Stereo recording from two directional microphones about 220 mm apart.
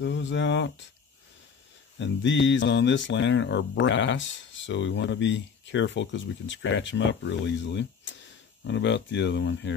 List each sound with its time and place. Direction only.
0.0 s speech: 55° left (ahead or behind)
2.0 s speech: 55° left (ahead or behind)